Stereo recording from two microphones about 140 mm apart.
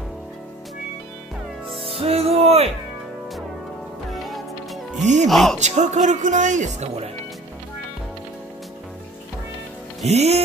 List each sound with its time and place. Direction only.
1.9 s music: 45° right (ahead or behind)
5.0 s speech: 55° right (ahead or behind)
5.3 s speech: centre (ahead or behind)
5.6 s speech: 55° right (ahead or behind)
10.0 s music: 50° right (ahead or behind)